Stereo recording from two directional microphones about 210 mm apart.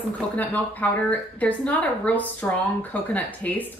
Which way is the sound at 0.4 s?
5° left (ahead or behind).